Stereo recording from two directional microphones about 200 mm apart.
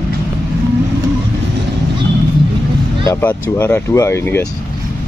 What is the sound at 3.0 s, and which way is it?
Moo, 10° left (ahead or behind).